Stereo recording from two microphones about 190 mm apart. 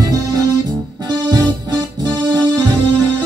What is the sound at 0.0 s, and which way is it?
Music, 20° right (ahead or behind).